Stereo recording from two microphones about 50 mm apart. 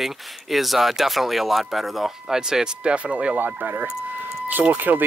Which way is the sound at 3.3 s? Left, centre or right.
Right.